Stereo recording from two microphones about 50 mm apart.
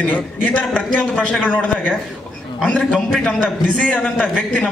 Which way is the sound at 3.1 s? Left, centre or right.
Centre.